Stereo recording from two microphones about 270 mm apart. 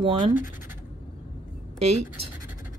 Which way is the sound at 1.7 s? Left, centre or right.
Right.